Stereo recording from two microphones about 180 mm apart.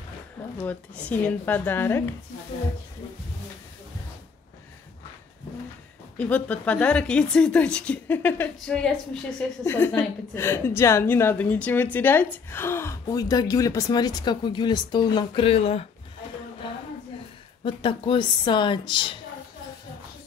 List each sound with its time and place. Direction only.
0.6 s a woman's voice: 10° left (ahead or behind)
6.1 s a woman's voice: 10° left (ahead or behind); by 15.9 s 35° left (ahead or behind)
16.6 s a sound: 25° left (ahead or behind)
17.6 s a woman's voice: 30° left (ahead or behind)